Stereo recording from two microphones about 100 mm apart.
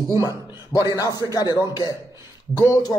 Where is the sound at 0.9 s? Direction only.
35° left (ahead or behind).